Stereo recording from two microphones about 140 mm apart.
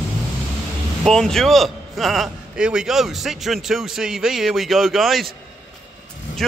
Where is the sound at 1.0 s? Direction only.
5° left (ahead or behind).